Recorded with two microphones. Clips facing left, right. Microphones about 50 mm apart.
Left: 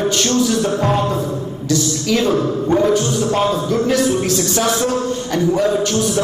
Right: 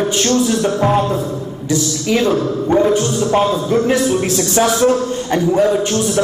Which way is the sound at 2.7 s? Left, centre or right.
Centre.